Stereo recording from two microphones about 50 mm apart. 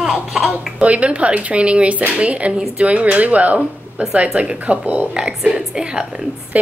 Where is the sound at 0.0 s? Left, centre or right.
Centre.